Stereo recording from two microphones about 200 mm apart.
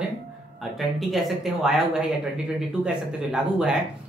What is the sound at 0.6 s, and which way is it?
Speech, centre (ahead or behind).